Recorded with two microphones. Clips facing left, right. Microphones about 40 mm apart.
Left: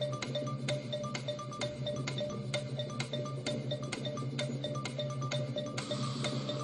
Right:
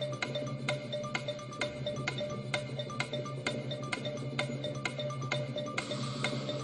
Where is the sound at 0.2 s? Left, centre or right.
Right.